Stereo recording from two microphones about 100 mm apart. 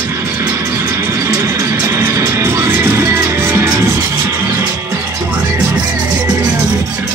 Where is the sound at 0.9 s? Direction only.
25° right (ahead or behind).